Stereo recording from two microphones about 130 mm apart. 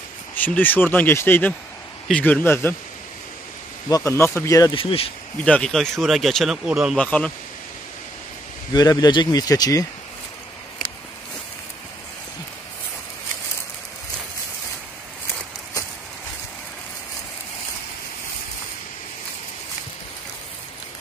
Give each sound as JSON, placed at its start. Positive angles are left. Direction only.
{"t": 0.3, "sound": "speech", "side_deg": 15}
{"t": 3.9, "sound": "speech", "side_deg": 25}
{"t": 4.7, "sound": "speech", "side_deg": 45}
{"t": 5.4, "sound": "speech", "side_deg": 5}
{"t": 7.0, "sound": "speech", "side_deg": 10}
{"t": 8.7, "sound": "speech", "side_deg": 30}